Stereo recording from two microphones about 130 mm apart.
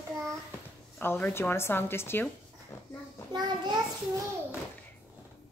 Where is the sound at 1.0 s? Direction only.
15° left (ahead or behind).